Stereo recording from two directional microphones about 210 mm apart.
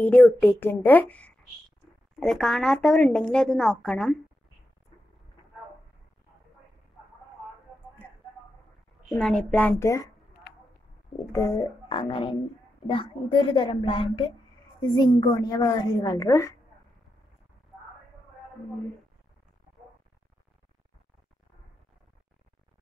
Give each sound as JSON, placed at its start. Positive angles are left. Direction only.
{"t": 0.0, "sound": "a woman's voice", "side_deg": 5}
{"t": 9.1, "sound": "speech", "side_deg": 5}
{"t": 11.1, "sound": "a woman's voice", "side_deg": 15}